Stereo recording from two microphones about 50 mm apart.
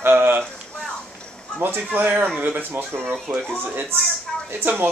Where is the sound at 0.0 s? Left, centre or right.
Right.